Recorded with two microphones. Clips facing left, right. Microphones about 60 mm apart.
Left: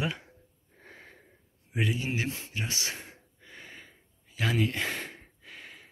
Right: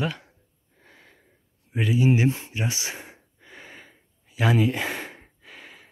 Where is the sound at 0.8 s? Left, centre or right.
Left.